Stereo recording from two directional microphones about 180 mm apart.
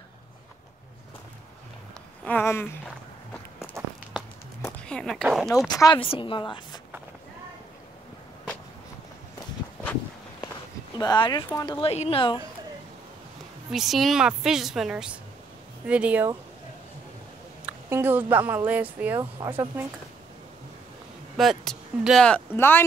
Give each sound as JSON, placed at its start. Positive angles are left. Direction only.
{"t": 2.2, "sound": "a sound", "side_deg": 10}
{"t": 3.6, "sound": "walk", "side_deg": -10}
{"t": 4.6, "sound": "a sound", "side_deg": 15}
{"t": 4.8, "sound": "speech", "side_deg": 5}
{"t": 5.7, "sound": "a woman's voice", "side_deg": 20}
{"t": 11.0, "sound": "a woman's voice", "side_deg": 25}
{"t": 11.8, "sound": "speech", "side_deg": 35}
{"t": 13.7, "sound": "speech", "side_deg": 0}
{"t": 17.6, "sound": "a woman's voice", "side_deg": -10}
{"t": 21.4, "sound": "speech", "side_deg": 0}